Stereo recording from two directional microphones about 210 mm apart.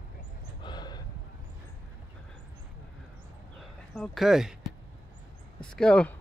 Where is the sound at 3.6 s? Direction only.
Centre (ahead or behind).